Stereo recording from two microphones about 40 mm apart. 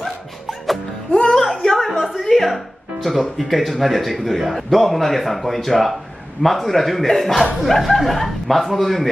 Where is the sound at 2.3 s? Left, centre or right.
Centre.